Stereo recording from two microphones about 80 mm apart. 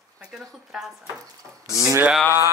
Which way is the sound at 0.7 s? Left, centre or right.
Centre.